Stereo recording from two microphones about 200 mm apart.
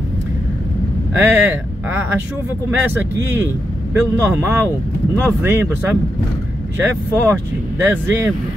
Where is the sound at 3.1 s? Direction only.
10° right (ahead or behind).